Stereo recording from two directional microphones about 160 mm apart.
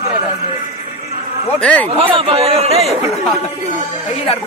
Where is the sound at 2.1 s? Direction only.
35° right (ahead or behind).